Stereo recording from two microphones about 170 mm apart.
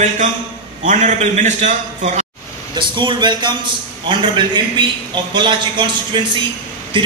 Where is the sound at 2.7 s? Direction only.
30° right (ahead or behind).